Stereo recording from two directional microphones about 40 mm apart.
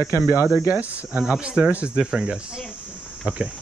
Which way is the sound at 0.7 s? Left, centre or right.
Right.